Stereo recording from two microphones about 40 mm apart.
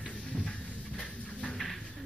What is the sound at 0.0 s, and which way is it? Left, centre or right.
Music, left.